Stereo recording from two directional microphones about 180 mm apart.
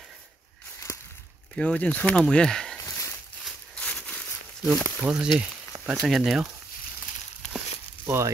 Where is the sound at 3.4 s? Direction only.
5° left (ahead or behind).